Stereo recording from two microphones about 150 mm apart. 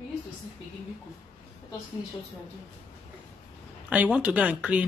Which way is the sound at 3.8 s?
10° right (ahead or behind).